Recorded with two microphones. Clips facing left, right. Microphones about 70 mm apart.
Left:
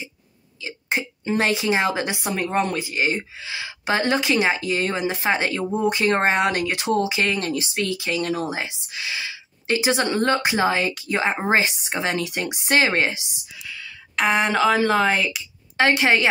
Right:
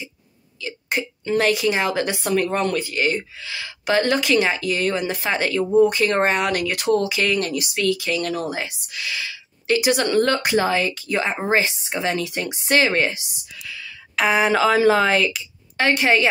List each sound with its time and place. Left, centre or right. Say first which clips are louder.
0.6 s a woman's voice: right 1 dB; left
13.7 s a woman's voice: right 1 dB; centre
15.8 s a woman's voice: even; left